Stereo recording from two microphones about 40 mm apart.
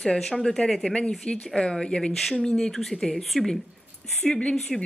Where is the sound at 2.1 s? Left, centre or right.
Centre; by 4.5 s left.